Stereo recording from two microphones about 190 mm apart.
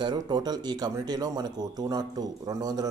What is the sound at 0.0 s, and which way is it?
Speech, 20° right (ahead or behind).